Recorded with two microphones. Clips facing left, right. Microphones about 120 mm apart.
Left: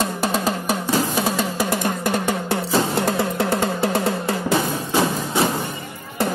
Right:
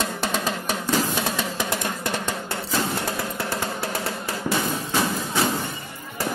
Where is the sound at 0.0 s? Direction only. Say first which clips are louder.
Left 4 dB; 40° left (ahead or behind).